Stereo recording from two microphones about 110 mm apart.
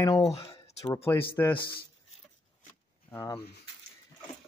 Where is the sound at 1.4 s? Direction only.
20° left (ahead or behind).